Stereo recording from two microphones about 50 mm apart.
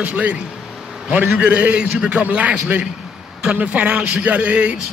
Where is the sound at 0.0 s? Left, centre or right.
Right.